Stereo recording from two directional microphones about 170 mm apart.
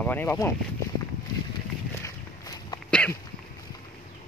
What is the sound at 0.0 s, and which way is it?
Speech, 10° left (ahead or behind).